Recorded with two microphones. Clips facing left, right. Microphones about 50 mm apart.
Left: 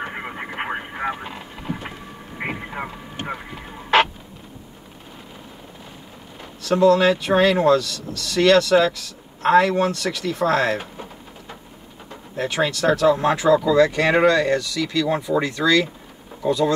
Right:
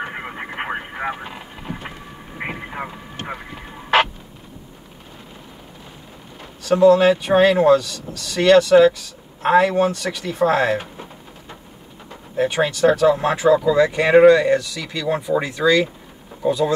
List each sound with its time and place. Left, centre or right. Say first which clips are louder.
0.0 s radio: right 1 dB; centre
3.3 s fowl: even; centre
6.6 s speech: right 3 dB; centre
12.4 s speech: right 4 dB; centre